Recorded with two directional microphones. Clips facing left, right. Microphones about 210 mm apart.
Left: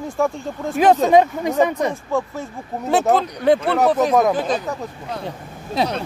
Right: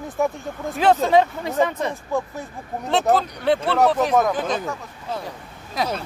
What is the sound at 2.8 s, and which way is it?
Speech, 10° left (ahead or behind).